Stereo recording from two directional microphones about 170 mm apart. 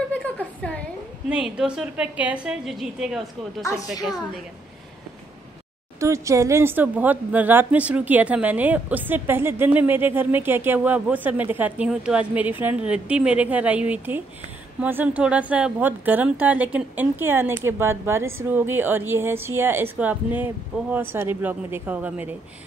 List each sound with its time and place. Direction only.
0.1 s a sound: 10° left (ahead or behind)
1.3 s a woman's voice: 5° right (ahead or behind)
3.6 s a woman's voice: 20° left (ahead or behind)
5.9 s speech: 15° right (ahead or behind)